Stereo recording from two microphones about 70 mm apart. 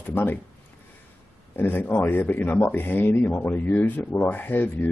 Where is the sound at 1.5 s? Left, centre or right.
Left.